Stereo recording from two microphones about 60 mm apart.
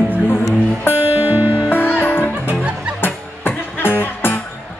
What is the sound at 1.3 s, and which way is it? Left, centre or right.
Music, right.